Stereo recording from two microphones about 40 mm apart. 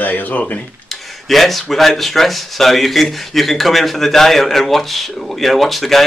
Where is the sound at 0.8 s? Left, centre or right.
Centre.